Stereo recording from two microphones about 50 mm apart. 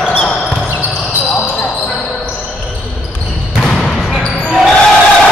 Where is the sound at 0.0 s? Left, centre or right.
Left.